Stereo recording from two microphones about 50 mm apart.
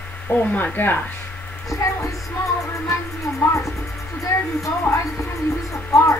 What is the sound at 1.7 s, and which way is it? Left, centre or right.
Music, left.